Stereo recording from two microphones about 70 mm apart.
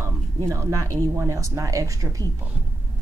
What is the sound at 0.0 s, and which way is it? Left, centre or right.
Speech, right.